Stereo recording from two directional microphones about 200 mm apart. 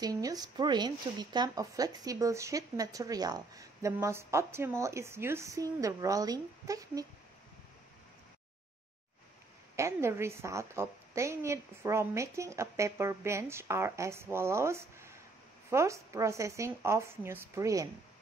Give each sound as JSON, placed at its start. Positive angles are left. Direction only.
{"t": 0.0, "sound": "a woman's voice", "side_deg": -20}
{"t": 9.8, "sound": "a woman's voice", "side_deg": -15}